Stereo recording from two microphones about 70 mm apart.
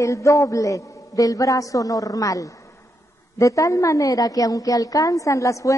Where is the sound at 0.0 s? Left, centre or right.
Left.